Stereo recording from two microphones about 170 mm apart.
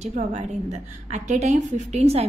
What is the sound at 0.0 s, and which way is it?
A woman's voice, 45° right (ahead or behind).